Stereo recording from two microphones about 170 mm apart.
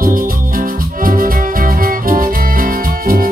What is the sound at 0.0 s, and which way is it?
Music, 55° right (ahead or behind).